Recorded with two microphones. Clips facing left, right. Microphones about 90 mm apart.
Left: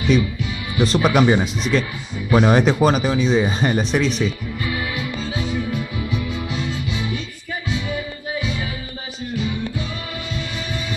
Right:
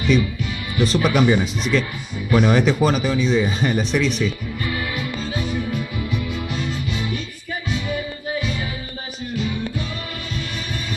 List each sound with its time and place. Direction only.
0.7 s speech: 25° left (ahead or behind)
5.5 s music: 5° right (ahead or behind)
6.1 s music: 10° left (ahead or behind)